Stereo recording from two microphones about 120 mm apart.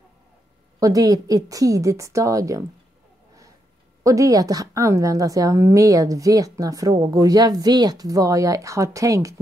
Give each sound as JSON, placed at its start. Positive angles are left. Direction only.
{"t": 0.7, "sound": "a woman's voice", "side_deg": -30}
{"t": 4.0, "sound": "a woman's voice", "side_deg": -25}